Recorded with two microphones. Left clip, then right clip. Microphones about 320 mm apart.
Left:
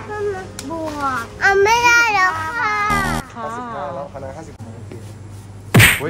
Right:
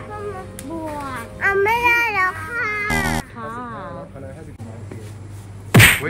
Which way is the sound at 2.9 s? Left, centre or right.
Centre.